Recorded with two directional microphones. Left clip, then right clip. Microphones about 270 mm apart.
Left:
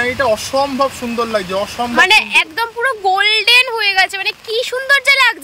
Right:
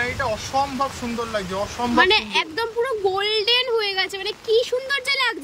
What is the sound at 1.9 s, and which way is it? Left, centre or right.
A woman's voice, centre.